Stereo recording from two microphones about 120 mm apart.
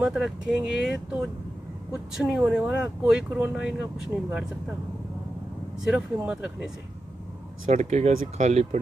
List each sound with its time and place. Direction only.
0.0 s speech: 5° right (ahead or behind)
5.9 s speech: 5° right (ahead or behind)
7.7 s speech: 70° right (ahead or behind)